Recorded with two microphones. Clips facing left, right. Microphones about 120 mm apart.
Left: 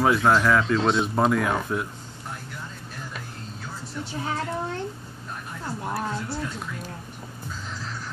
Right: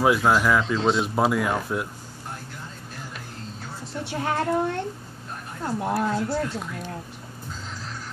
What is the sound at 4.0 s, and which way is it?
Speech, 60° right (ahead or behind).